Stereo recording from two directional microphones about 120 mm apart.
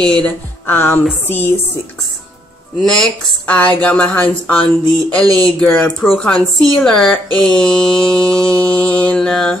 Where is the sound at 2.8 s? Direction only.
5° left (ahead or behind).